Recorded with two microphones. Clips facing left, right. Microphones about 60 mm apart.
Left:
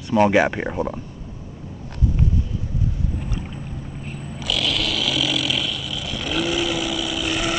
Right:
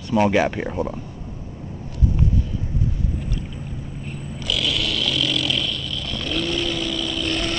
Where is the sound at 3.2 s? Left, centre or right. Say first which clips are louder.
Even; centre.